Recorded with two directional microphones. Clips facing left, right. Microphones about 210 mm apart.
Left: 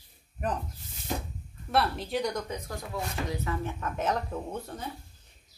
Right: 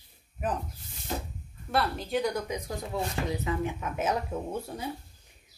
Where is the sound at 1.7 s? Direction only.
Centre (ahead or behind).